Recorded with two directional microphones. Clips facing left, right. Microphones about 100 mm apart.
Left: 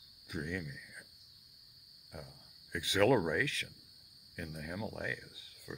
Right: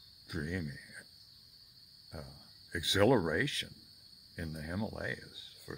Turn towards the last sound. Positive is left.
turn(degrees=-15)  # may be behind; listen again after turning